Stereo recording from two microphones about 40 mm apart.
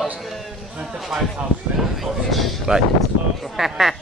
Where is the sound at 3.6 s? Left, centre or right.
Centre.